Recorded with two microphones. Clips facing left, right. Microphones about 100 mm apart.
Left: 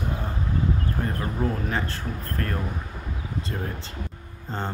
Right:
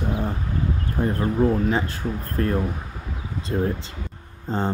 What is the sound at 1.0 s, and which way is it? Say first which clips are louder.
Speech: right 6 dB; 15° right (ahead or behind).